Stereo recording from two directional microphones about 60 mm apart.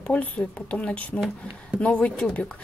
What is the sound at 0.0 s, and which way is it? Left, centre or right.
Speech, centre.